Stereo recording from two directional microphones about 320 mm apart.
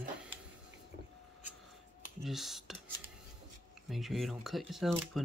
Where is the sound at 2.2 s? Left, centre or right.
Centre.